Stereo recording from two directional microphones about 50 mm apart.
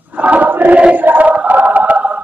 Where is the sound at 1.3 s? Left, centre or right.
Right.